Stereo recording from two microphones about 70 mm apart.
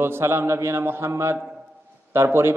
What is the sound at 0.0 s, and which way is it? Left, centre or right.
A man's voice, right.